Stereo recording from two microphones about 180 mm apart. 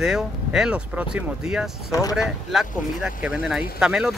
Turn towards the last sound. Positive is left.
turn(degrees=-5)  # may be behind; listen again after turning